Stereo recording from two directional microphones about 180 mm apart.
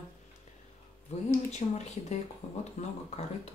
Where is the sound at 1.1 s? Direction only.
40° left (ahead or behind).